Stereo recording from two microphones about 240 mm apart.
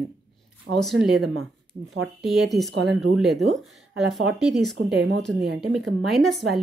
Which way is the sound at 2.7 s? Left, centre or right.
Right.